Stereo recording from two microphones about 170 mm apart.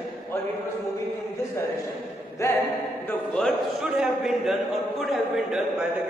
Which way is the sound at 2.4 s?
15° left (ahead or behind).